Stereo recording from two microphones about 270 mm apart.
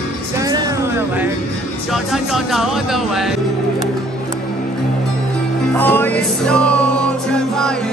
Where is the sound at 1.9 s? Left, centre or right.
Centre.